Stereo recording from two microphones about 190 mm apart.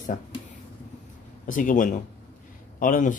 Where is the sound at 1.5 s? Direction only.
45° left (ahead or behind).